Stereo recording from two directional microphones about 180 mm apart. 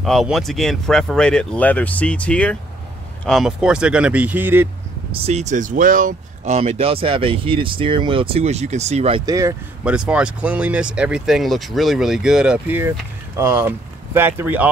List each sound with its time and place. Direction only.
0.0 s speech: centre (ahead or behind)
5.1 s speech: 35° right (ahead or behind)
9.2 s speech: 20° right (ahead or behind)
9.8 s speech: 5° right (ahead or behind)